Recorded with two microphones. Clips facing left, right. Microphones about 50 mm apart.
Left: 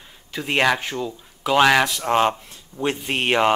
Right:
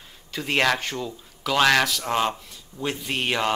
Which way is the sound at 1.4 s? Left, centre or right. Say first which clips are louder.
Left 3 dB; centre.